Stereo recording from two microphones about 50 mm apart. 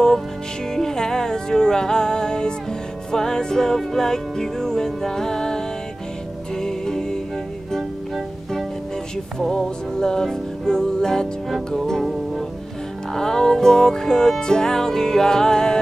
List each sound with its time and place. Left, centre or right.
0.7 s music: centre
9.4 s music: centre